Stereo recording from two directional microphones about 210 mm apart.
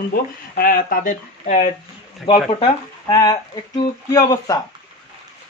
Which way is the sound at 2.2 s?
20° left (ahead or behind).